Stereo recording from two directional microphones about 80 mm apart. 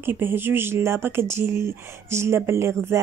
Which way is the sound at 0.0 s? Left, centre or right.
Right.